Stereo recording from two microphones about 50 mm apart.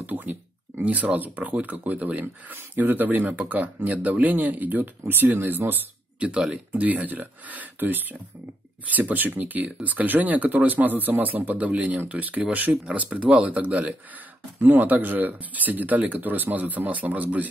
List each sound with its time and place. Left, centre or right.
0.0 s speech: right
6.1 s speech: right
14.6 s speech: right